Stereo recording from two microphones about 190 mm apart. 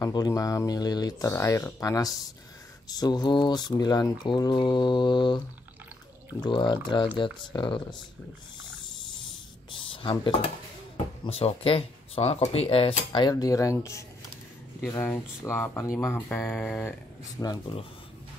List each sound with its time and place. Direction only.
0.0 s speech: 20° left (ahead or behind)
6.4 s speech: 25° left (ahead or behind)
9.7 s a sound: 25° left (ahead or behind)
11.2 s speech: 30° left (ahead or behind); by 16.9 s 5° left (ahead or behind)
17.4 s speech: 20° left (ahead or behind)